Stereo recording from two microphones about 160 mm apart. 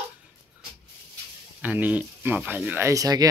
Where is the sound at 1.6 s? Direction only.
10° right (ahead or behind).